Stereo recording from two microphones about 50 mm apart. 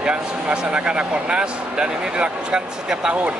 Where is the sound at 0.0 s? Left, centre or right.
Right.